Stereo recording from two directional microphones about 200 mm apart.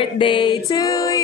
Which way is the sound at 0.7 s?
20° left (ahead or behind).